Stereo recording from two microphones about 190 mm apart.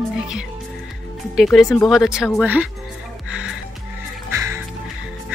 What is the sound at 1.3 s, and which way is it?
Speech, centre (ahead or behind).